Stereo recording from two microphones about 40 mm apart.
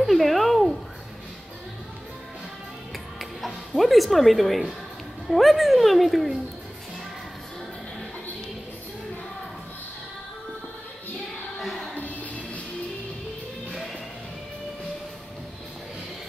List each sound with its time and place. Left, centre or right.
0.0 s a sound: centre
3.2 s speech: centre
11.5 s music: centre
11.9 s music: left